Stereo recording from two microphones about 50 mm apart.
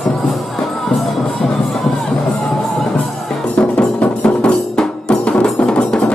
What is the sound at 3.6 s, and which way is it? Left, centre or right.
Music, left.